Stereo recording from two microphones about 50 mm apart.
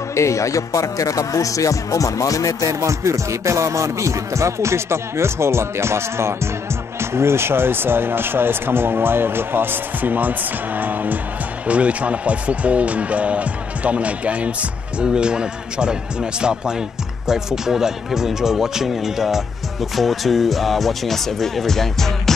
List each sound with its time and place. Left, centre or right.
0.1 s speech: left
2.7 s music: right
7.0 s speech: right; by 22.3 s centre